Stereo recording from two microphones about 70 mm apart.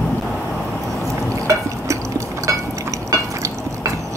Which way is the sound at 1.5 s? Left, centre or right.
Right.